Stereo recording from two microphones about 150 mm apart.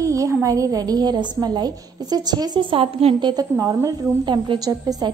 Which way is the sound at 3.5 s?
20° right (ahead or behind).